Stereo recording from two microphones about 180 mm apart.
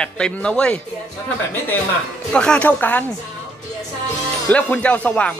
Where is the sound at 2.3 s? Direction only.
5° left (ahead or behind).